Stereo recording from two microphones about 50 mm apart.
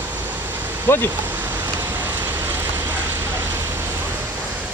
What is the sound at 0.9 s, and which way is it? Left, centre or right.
Speech, left.